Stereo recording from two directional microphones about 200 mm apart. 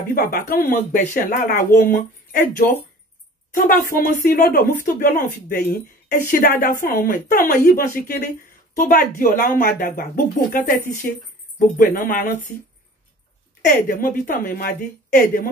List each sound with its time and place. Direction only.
0.1 s speech: 50° left (ahead or behind)
13.7 s speech: 45° left (ahead or behind)